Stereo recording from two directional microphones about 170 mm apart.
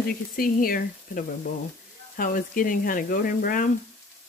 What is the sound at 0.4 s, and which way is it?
Speech, 60° left (ahead or behind).